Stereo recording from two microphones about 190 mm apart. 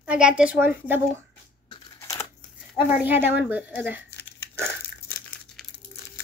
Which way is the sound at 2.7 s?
10° right (ahead or behind).